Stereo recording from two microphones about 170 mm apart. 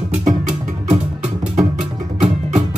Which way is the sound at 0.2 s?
50° right (ahead or behind).